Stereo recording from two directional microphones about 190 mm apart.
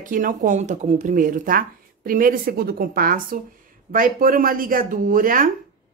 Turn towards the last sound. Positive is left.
turn(degrees=-45)  # may be behind; listen again after turning